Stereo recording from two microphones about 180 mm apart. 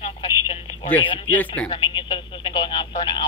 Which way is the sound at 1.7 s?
25° left (ahead or behind).